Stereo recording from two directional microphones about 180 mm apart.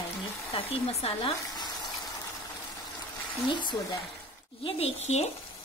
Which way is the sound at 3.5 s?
25° left (ahead or behind).